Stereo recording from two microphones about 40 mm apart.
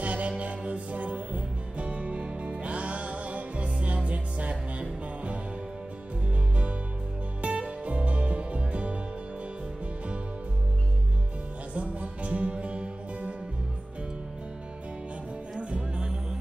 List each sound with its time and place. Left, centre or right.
0.0 s music: right
7.4 s music: right
11.7 s music: right
15.7 s music: centre